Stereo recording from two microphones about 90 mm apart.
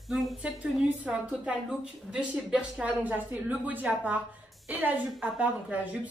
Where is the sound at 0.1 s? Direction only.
Centre (ahead or behind).